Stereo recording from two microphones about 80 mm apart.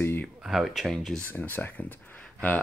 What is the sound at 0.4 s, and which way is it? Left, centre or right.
Speech, centre.